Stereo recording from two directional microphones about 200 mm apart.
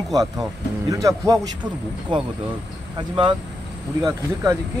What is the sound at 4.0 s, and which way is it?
Speech, 15° right (ahead or behind).